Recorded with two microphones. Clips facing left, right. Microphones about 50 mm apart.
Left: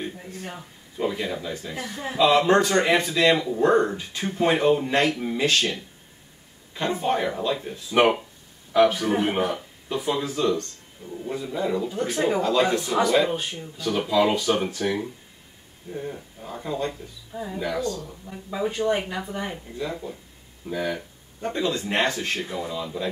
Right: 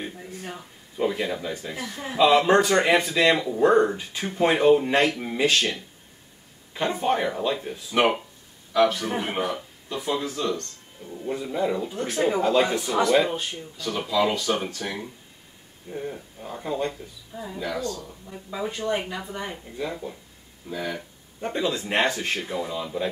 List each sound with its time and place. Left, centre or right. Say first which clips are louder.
0.3 s speech: even; centre
7.9 s speech: left 2 dB; centre
15.9 s speech: even; centre
17.3 s speech: left 2 dB; centre
20.6 s speech: left 3 dB; centre
21.4 s speech: left 1 dB; centre